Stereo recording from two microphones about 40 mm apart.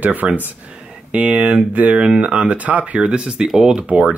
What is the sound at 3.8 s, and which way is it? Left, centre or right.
Speech, right.